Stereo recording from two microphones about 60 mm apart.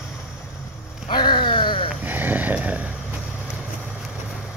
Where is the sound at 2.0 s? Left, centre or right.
Right.